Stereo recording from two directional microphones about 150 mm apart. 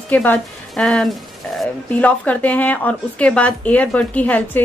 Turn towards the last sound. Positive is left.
turn(degrees=10)  # may be behind; listen again after turning